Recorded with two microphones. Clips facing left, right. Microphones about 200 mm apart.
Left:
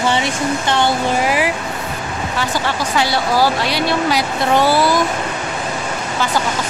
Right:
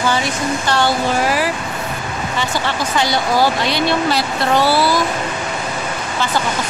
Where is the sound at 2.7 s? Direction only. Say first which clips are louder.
Even; 5° left (ahead or behind).